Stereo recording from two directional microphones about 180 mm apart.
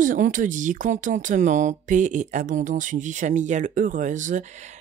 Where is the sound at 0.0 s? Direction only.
45° right (ahead or behind).